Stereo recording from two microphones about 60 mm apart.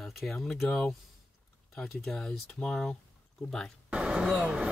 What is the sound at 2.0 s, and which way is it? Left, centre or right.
Speech, centre.